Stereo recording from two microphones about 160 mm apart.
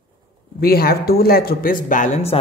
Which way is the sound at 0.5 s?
70° left (ahead or behind).